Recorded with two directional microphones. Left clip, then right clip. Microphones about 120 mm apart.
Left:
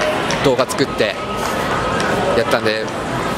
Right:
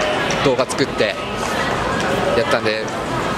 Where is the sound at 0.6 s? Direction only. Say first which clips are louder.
Left 1 dB; 5° left (ahead or behind).